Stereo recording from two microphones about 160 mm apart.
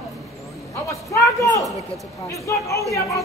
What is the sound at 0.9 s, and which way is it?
A man's voice, 20° left (ahead or behind).